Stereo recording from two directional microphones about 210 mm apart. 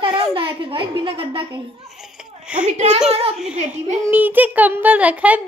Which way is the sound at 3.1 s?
30° right (ahead or behind).